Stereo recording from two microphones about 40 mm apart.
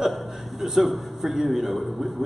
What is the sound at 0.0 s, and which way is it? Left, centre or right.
A man's voice, centre.